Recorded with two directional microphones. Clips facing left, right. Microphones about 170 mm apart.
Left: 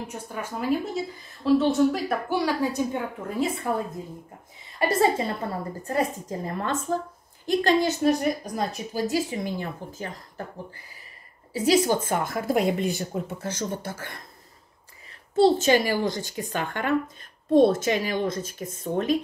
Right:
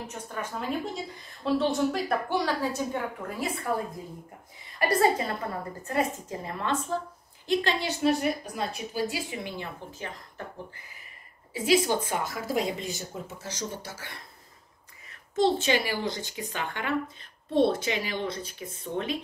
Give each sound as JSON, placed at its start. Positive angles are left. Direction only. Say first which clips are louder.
{"t": 0.1, "sound": "a woman's voice", "louder": "left 2 dB", "side_deg": 10}
{"t": 4.7, "sound": "a woman's voice", "louder": "left 2 dB", "side_deg": 25}
{"t": 5.9, "sound": "a woman's voice", "louder": "left 2 dB", "side_deg": 40}
{"t": 11.5, "sound": "a woman's voice", "louder": "left 3 dB", "side_deg": 40}
{"t": 15.0, "sound": "a woman's voice", "louder": "left 5 dB", "side_deg": 35}